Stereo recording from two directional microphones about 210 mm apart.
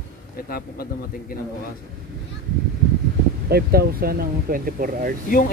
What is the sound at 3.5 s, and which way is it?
Speech, 45° right (ahead or behind).